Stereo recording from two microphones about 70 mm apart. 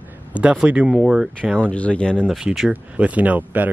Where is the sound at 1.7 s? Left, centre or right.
Centre.